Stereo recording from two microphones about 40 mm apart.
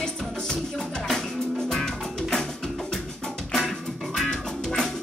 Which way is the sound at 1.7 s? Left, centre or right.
Centre.